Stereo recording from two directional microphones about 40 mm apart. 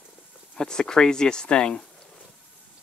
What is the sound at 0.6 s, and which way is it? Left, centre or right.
Speech, centre.